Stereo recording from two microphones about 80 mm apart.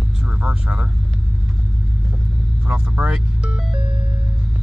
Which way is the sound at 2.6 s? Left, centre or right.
Centre.